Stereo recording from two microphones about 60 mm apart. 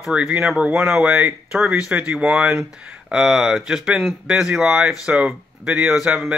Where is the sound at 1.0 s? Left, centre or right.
Right.